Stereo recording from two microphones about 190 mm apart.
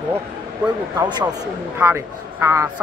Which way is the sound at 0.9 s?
20° right (ahead or behind).